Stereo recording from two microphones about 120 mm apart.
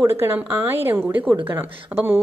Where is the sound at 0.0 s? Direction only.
20° right (ahead or behind).